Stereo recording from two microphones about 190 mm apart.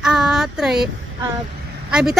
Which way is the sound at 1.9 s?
5° right (ahead or behind).